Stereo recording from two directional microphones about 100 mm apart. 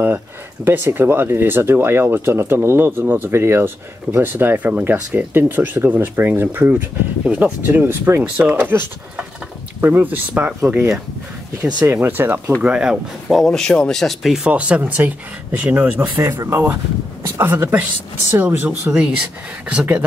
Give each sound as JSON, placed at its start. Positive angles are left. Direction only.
{"t": 0.7, "sound": "speech", "side_deg": -20}
{"t": 11.9, "sound": "speech", "side_deg": -20}
{"t": 12.6, "sound": "speech", "side_deg": -10}
{"t": 14.5, "sound": "speech", "side_deg": -15}
{"t": 16.2, "sound": "speech", "side_deg": -30}